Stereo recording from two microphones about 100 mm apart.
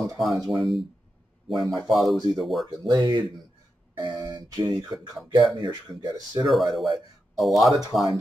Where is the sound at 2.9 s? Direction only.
50° right (ahead or behind).